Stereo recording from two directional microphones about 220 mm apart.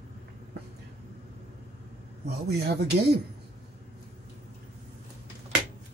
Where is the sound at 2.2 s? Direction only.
50° right (ahead or behind).